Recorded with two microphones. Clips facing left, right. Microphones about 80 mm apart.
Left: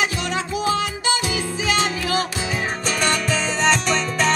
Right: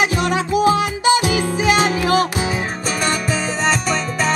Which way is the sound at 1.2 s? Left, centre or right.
Right.